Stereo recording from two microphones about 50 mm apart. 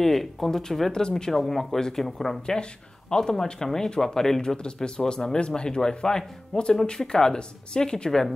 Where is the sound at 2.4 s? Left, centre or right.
Centre.